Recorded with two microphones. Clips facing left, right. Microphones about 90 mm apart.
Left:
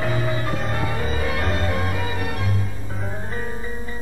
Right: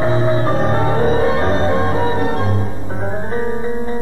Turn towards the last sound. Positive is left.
turn(degrees=-40)  # may be behind; listen again after turning